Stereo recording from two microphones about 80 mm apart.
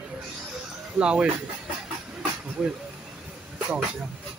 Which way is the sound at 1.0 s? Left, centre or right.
Centre.